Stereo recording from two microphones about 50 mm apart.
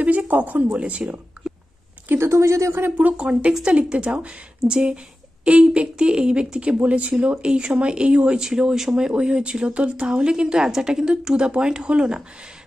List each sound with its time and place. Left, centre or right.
0.3 s speech: right
2.1 s a woman's voice: right
3.0 s speech: right